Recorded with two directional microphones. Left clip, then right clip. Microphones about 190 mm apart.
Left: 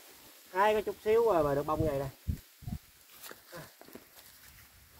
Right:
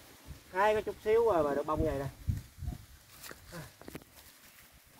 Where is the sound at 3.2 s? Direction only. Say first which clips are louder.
Even; 20° right (ahead or behind).